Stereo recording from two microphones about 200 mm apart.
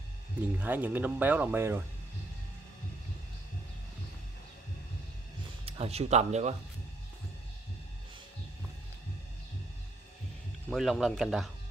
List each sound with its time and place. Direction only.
0.5 s speech: 10° right (ahead or behind)
5.7 s speech: 30° right (ahead or behind)
10.7 s speech: centre (ahead or behind)